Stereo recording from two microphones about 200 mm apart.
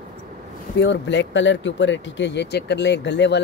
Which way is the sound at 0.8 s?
65° left (ahead or behind).